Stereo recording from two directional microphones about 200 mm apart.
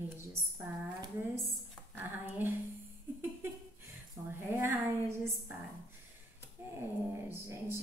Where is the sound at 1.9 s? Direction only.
10° right (ahead or behind).